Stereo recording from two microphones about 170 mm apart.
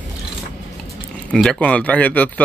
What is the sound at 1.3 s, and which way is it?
Speech, 5° left (ahead or behind).